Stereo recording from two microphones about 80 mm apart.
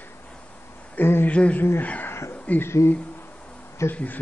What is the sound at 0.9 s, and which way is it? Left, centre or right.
Speech, left.